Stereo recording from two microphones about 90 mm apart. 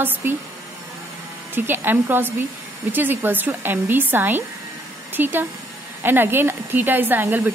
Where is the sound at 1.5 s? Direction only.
25° right (ahead or behind).